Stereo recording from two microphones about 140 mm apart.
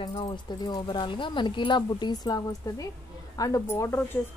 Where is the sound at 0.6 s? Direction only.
30° left (ahead or behind).